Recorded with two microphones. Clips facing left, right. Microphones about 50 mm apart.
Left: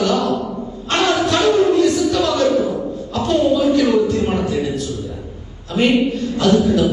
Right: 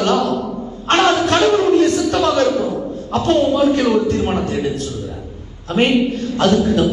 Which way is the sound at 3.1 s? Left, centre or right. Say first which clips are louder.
Right 1 dB; right.